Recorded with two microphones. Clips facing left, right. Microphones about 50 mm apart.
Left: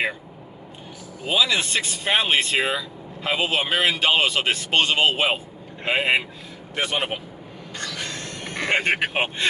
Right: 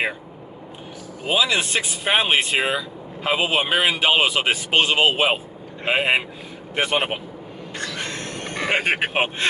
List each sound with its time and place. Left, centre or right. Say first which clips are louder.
1.2 s speech: right 1 dB; centre
6.7 s speech: right 3 dB; right
7.7 s a sound: right 2 dB; right
8.4 s speech: even; centre